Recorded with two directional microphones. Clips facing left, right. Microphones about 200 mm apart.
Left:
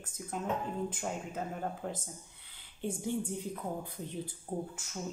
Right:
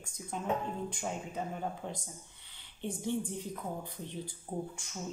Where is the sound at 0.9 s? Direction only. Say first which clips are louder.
Even; 5° left (ahead or behind).